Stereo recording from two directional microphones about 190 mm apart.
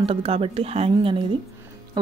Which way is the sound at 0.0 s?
30° right (ahead or behind).